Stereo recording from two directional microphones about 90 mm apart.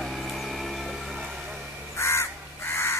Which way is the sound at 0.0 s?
5° left (ahead or behind).